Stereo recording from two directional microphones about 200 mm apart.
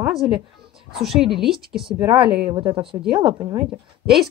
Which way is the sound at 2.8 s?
25° right (ahead or behind).